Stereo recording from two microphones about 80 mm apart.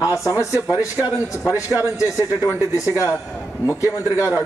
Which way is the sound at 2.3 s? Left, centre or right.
Left.